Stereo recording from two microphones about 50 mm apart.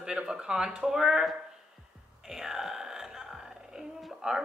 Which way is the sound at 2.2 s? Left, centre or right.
Centre.